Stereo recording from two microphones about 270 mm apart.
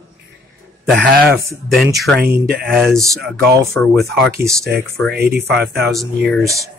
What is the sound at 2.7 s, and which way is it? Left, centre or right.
Speech, centre.